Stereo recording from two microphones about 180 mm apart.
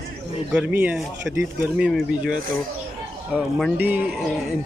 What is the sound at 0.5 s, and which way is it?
Speech, 10° right (ahead or behind).